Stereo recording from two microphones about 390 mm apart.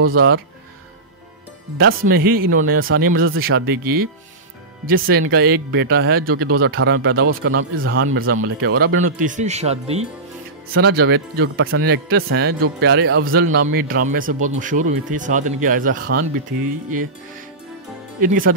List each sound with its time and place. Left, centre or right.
1.8 s speech: right
18.2 s speech: right